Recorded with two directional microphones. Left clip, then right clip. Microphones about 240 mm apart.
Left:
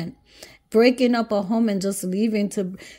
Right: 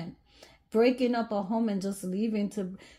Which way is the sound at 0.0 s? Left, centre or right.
Left.